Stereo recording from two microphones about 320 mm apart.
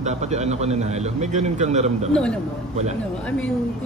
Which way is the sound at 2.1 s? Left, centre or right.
Centre.